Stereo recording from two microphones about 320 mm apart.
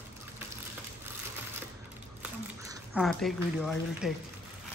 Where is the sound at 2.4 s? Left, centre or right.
Centre.